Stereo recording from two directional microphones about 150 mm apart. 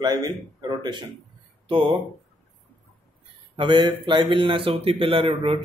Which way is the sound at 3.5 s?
30° right (ahead or behind).